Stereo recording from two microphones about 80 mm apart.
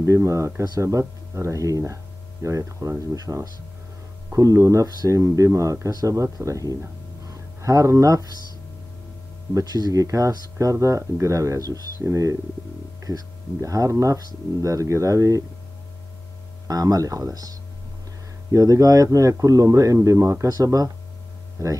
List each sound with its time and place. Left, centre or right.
0.0 s speech: right
9.5 s speech: right
16.6 s speech: right